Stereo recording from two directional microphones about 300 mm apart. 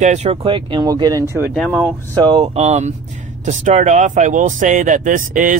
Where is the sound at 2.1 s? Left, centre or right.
Centre.